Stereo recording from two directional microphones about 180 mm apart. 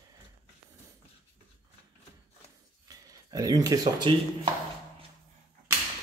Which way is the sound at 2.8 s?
20° right (ahead or behind).